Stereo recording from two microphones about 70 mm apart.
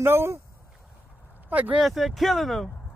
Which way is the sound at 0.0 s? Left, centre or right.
Right.